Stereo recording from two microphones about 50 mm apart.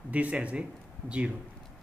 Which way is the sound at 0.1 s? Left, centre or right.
Right.